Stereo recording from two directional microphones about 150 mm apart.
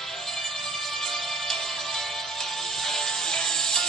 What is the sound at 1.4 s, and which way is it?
Music, 5° left (ahead or behind).